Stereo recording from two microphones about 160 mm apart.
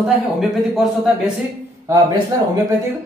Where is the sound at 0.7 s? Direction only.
Centre (ahead or behind).